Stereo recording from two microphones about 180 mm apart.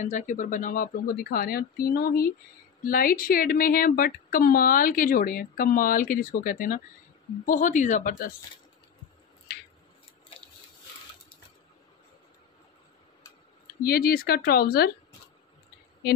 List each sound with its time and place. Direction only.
0.0 s a woman's voice: 45° left (ahead or behind)
13.8 s speech: 55° left (ahead or behind)